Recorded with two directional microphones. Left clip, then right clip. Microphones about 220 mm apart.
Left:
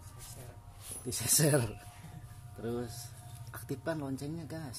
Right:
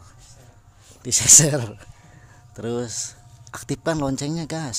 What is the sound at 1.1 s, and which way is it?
Speech, 35° right (ahead or behind).